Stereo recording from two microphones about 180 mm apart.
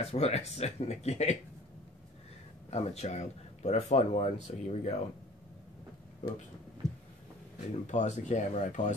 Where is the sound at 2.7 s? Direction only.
35° left (ahead or behind).